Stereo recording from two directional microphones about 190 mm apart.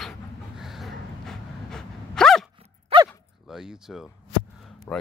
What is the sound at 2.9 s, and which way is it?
Dog, 30° right (ahead or behind).